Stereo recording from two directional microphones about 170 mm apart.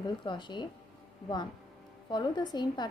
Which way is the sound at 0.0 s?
30° left (ahead or behind).